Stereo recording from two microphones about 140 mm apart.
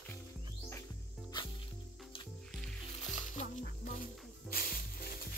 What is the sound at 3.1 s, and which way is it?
Music, 60° left (ahead or behind).